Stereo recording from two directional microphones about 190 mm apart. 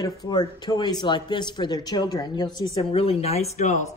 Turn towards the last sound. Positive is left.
turn(degrees=35)  # may be behind; listen again after turning